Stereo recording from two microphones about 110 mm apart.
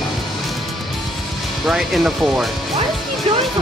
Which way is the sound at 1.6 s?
Centre (ahead or behind).